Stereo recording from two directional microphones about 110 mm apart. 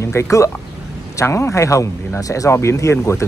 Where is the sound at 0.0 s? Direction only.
25° left (ahead or behind).